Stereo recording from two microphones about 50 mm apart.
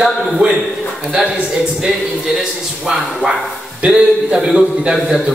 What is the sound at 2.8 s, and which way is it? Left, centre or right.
A man's voice, centre.